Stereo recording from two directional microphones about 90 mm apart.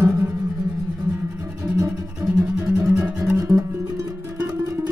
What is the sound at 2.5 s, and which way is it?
Music, 20° right (ahead or behind).